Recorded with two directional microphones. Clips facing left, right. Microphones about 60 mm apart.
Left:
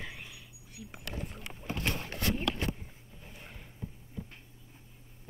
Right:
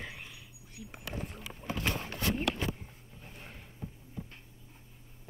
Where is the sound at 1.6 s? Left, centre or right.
Centre.